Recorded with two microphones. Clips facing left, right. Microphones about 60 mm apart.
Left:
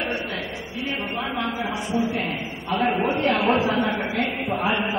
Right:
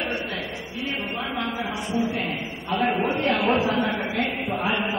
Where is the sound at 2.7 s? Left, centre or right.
Centre.